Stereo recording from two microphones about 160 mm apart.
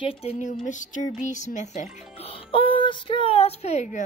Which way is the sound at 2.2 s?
35° left (ahead or behind).